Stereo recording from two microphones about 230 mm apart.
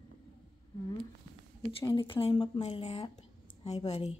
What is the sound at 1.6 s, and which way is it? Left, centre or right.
Speech, left.